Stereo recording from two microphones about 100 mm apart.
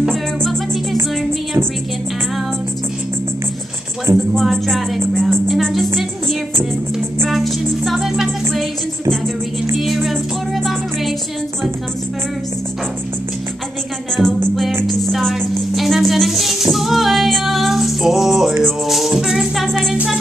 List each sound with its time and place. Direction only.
0.1 s music: 5° left (ahead or behind)
4.4 s a sound: centre (ahead or behind)
5.5 s music: centre (ahead or behind)
7.2 s music: centre (ahead or behind)
9.8 s music: centre (ahead or behind)
14.2 s music: centre (ahead or behind)
16.7 s female singing: centre (ahead or behind)
18.6 s music: centre (ahead or behind)